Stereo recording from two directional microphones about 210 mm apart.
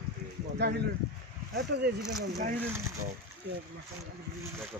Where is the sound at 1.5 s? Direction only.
55° right (ahead or behind).